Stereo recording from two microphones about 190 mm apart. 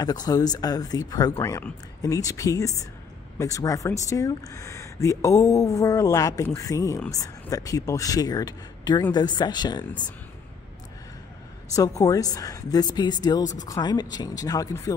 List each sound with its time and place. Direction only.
0.0 s speech: 20° left (ahead or behind)
11.7 s speech: 15° left (ahead or behind)